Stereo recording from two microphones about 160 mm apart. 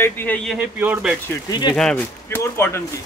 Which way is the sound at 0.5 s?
10° right (ahead or behind).